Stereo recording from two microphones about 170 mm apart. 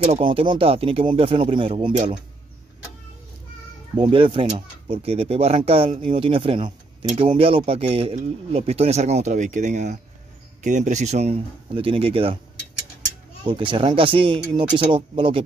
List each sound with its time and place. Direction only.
0.0 s speech: 35° right (ahead or behind)
3.9 s speech: 30° right (ahead or behind)
13.4 s speech: 30° right (ahead or behind)